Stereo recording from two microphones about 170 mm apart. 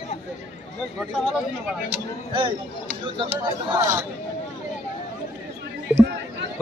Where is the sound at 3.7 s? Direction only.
15° right (ahead or behind).